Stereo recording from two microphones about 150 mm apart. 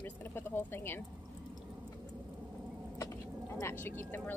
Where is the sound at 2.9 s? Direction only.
20° left (ahead or behind).